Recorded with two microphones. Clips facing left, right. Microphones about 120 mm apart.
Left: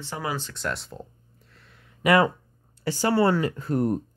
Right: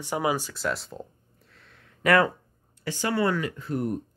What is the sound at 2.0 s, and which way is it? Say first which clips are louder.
Speech: left 1 dB; 15° left (ahead or behind).